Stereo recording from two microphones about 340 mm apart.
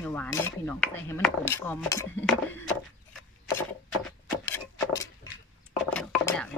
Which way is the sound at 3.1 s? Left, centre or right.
Centre.